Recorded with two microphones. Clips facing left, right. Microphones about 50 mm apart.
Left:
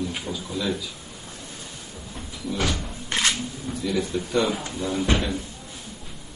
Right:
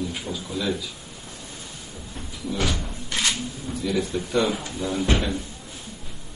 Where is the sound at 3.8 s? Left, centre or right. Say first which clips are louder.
Even; centre.